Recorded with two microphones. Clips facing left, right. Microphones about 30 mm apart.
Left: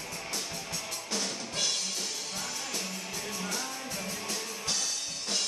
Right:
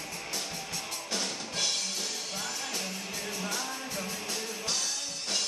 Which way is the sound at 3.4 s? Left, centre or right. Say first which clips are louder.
Right 1 dB; centre.